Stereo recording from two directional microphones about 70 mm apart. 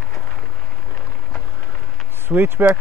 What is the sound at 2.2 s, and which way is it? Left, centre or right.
Speech, right.